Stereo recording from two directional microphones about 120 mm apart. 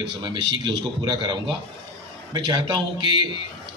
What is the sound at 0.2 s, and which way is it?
A man's voice, 40° right (ahead or behind).